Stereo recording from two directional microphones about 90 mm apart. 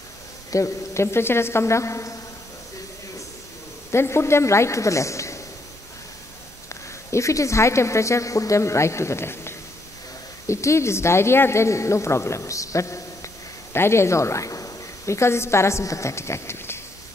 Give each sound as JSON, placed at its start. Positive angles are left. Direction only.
{"t": 0.5, "sound": "speech", "side_deg": 35}
{"t": 3.9, "sound": "speech", "side_deg": 30}
{"t": 7.1, "sound": "speech", "side_deg": 35}